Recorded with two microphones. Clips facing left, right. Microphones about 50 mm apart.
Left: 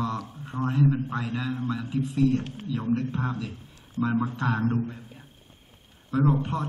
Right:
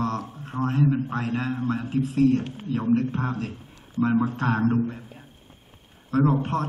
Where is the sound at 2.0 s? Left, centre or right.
Right.